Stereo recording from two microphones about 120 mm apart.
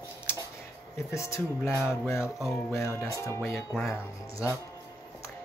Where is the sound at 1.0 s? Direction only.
25° left (ahead or behind).